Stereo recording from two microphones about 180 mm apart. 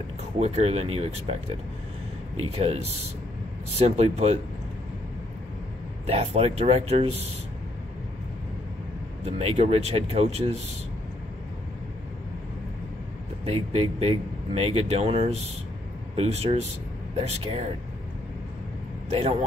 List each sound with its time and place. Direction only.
0.2 s speech: 35° right (ahead or behind)
2.5 s speech: 35° right (ahead or behind)
6.0 s speech: 35° right (ahead or behind)
9.2 s speech: 35° right (ahead or behind)
13.5 s speech: 35° right (ahead or behind)